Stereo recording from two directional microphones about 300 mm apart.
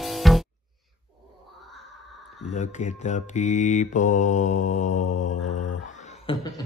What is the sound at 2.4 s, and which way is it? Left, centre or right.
Mantra, left.